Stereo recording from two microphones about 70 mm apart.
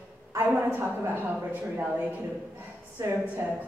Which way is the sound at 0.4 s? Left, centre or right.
Right.